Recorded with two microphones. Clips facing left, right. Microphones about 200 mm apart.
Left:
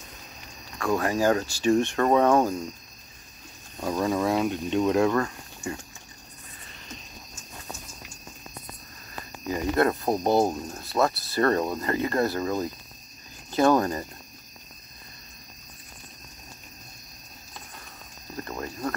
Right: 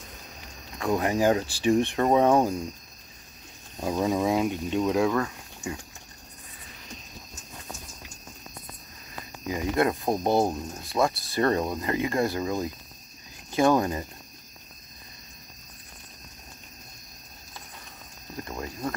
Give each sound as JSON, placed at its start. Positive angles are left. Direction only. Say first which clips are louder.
{"t": 0.7, "sound": "speech", "louder": "even", "side_deg": -20}
{"t": 3.8, "sound": "speech", "louder": "even", "side_deg": -15}
{"t": 9.5, "sound": "speech", "louder": "left 1 dB", "side_deg": -15}
{"t": 10.0, "sound": "speech", "louder": "left 1 dB", "side_deg": 5}
{"t": 11.3, "sound": "speech", "louder": "left 1 dB", "side_deg": -20}
{"t": 18.5, "sound": "a sound", "louder": "left 1 dB", "side_deg": -10}